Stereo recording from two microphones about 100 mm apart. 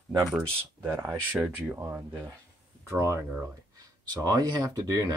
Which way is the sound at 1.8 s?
25° right (ahead or behind).